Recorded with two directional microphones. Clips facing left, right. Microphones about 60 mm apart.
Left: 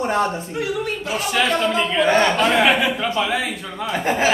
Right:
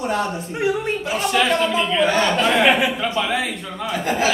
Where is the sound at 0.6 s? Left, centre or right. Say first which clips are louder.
Right 4 dB; right.